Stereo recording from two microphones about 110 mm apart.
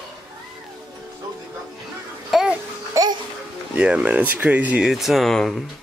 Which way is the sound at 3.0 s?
30° right (ahead or behind).